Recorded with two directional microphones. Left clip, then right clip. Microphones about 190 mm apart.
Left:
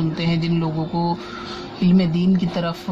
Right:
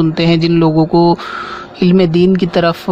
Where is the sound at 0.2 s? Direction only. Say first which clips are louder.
Right 15 dB; 45° right (ahead or behind).